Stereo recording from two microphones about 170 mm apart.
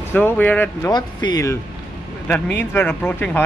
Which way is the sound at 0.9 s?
25° left (ahead or behind).